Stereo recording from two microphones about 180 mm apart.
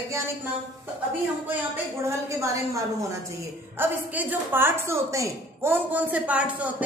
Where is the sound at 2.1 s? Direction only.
15° right (ahead or behind).